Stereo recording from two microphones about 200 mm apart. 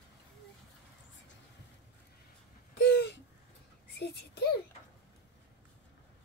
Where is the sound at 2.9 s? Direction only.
55° left (ahead or behind).